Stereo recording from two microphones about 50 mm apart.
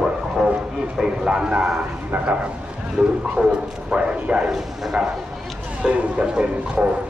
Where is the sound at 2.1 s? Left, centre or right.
Right.